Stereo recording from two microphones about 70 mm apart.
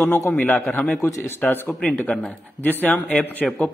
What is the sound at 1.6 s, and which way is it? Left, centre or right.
Speech, centre.